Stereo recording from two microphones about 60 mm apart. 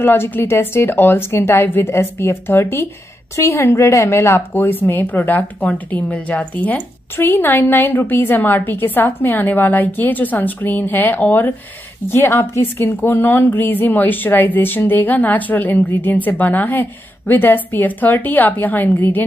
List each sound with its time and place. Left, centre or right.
0.0 s a woman's voice: left